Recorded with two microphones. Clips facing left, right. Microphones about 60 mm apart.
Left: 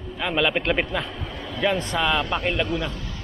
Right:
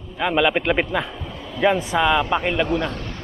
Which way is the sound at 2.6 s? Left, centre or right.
Right.